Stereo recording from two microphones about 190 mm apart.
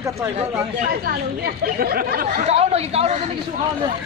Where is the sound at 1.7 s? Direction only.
50° right (ahead or behind).